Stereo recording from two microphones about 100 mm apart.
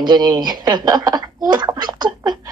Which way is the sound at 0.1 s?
40° right (ahead or behind).